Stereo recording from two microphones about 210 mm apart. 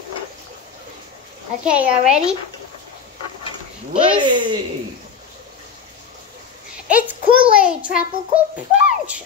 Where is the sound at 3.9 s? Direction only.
20° right (ahead or behind).